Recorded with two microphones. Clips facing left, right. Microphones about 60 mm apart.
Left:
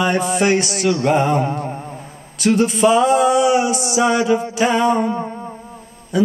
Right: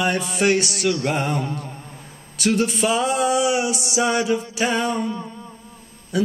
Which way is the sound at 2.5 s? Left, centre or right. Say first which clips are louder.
Left 7 dB; centre.